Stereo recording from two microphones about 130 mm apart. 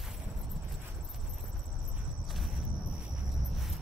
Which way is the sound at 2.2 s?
Centre (ahead or behind).